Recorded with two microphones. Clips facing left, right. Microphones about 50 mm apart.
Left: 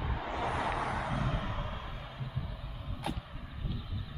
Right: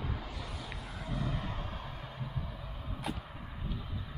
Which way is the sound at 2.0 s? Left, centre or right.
Centre.